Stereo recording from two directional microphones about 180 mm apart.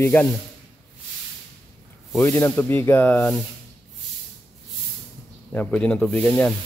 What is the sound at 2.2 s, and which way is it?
Speech, 10° left (ahead or behind).